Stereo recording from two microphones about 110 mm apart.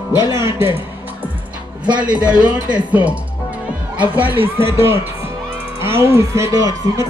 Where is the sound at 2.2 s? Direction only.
10° right (ahead or behind).